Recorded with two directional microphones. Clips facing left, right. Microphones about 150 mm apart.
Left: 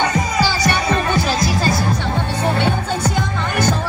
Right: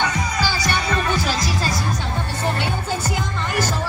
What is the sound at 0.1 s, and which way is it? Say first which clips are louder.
Music: left 5 dB; 70° left (ahead or behind).